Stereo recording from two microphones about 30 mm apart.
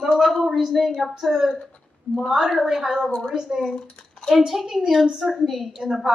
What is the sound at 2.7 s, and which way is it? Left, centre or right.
Speech, centre.